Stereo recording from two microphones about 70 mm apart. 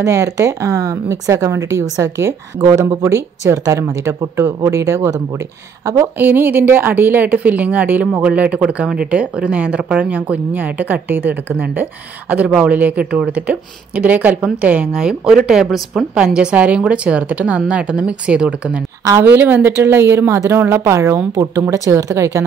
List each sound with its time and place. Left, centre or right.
0.0 s a woman's voice: right
6.1 s a woman's voice: right; by 16.1 s centre
16.3 s a woman's voice: centre
19.2 s a woman's voice: right